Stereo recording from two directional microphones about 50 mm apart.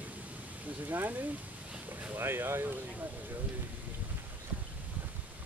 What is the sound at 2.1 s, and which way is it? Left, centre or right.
Speech, right.